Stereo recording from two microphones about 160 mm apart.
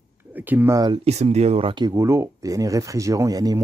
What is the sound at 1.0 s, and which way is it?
Speech, 45° right (ahead or behind).